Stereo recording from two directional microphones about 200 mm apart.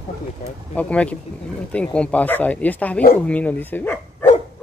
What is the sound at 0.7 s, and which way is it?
Speech, 5° left (ahead or behind).